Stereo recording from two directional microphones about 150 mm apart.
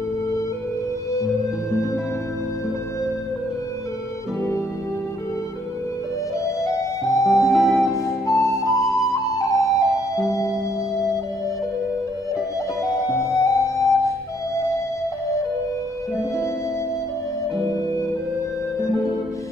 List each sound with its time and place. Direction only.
6.4 s music: 20° left (ahead or behind)
7.3 s music: centre (ahead or behind)
7.9 s flute: 20° left (ahead or behind)
13.1 s music: 20° left (ahead or behind)